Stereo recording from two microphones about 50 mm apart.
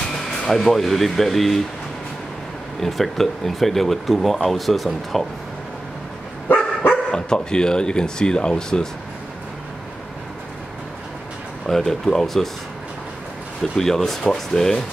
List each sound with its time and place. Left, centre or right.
0.5 s speech: centre
2.8 s speech: centre
6.9 s speech: centre
11.6 s speech: centre
13.7 s speech: centre